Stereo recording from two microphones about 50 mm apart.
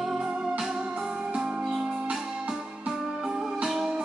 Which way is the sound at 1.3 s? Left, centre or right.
Centre.